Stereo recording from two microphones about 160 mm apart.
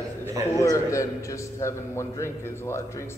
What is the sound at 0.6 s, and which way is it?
A man's voice, 20° left (ahead or behind).